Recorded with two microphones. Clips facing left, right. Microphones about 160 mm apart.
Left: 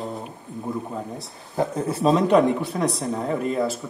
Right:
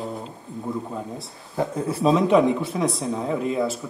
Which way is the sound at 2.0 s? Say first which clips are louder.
Even; centre (ahead or behind).